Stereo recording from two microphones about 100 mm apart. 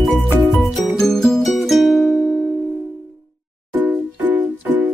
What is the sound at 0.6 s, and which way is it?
Music, centre (ahead or behind).